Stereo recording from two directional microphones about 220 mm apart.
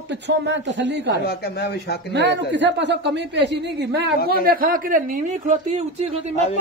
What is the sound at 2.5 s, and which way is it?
Speech, 55° right (ahead or behind).